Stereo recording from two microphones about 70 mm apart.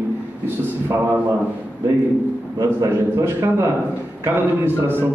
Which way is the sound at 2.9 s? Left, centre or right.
Right.